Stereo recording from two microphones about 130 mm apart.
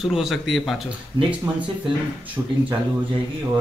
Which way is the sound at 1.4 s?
25° right (ahead or behind).